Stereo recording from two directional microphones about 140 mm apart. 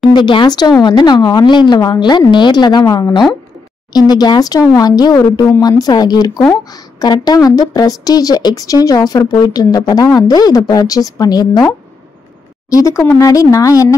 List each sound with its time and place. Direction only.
0.1 s a woman's voice: 35° left (ahead or behind)